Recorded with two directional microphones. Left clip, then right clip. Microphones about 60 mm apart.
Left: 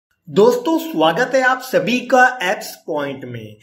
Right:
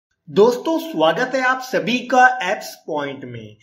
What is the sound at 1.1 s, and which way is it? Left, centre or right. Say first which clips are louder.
Speech: left 3 dB; left.